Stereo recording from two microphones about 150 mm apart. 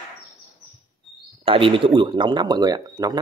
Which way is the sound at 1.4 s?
35° right (ahead or behind).